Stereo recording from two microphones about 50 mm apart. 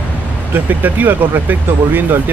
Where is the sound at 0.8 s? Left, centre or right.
Right.